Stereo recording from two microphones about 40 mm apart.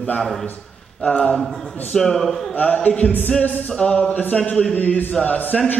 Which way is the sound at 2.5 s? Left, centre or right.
Left.